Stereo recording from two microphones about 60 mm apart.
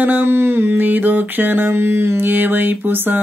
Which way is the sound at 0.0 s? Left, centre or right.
Right.